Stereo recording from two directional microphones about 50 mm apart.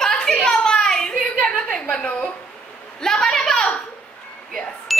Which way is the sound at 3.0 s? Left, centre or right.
Centre.